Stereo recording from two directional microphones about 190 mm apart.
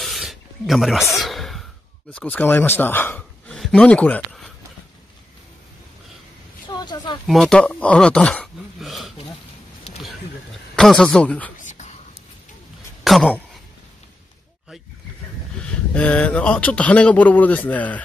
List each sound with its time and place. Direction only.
0.0 s snake: centre (ahead or behind)
1.2 s a sound: centre (ahead or behind)
2.1 s a man's voice: 10° left (ahead or behind)
6.7 s a sound: 20° left (ahead or behind)
7.2 s speech: centre (ahead or behind)
10.8 s speech: 5° left (ahead or behind)
11.5 s a sound: 40° left (ahead or behind)
13.0 s speech: centre (ahead or behind)
15.6 s speech: 5° left (ahead or behind)